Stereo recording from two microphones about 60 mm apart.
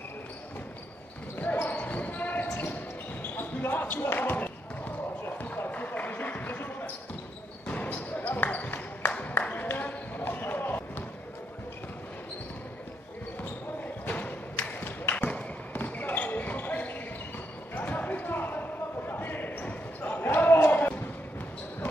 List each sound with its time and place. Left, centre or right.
1.4 s basketball bounce: left
5.7 s basketball bounce: left
14.0 s thump: left
15.7 s basketball bounce: left